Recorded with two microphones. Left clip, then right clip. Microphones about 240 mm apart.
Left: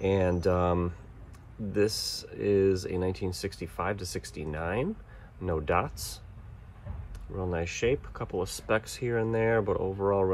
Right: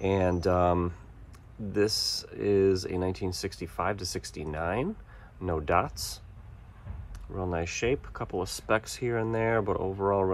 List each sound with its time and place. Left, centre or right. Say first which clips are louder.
0.0 s speech: even; right
7.5 s speech: left 1 dB; right